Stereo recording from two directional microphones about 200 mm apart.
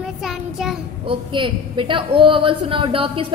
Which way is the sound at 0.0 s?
Centre (ahead or behind).